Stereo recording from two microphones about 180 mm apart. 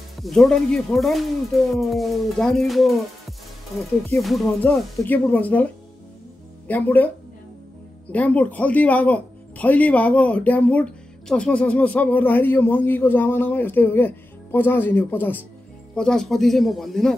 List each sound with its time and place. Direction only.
0.2 s music: centre (ahead or behind)
4.2 s speech: centre (ahead or behind)
6.7 s speech: 10° left (ahead or behind)
8.1 s speech: 10° left (ahead or behind)
15.9 s music: 5° left (ahead or behind)